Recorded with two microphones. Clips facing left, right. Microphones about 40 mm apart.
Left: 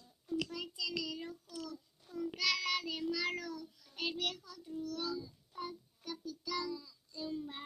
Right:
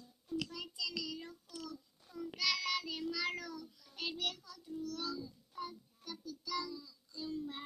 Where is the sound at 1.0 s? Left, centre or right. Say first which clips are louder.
Left 2 dB; left.